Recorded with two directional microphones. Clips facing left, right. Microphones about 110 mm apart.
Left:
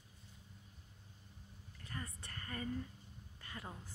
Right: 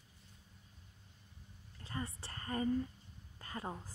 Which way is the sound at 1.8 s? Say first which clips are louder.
Right 5 dB; 25° right (ahead or behind).